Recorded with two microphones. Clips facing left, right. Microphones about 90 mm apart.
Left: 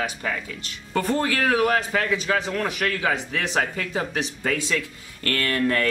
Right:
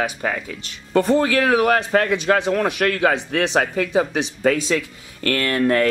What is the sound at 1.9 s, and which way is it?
A man's voice, 55° right (ahead or behind).